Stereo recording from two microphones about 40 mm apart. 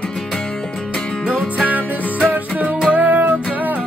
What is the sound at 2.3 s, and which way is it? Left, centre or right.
Music, right.